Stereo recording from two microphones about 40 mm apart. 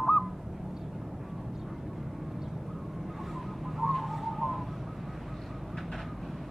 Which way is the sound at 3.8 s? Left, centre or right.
Centre.